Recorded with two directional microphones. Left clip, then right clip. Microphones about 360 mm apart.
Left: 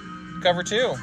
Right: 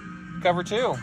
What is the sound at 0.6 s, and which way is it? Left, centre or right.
Speech, centre.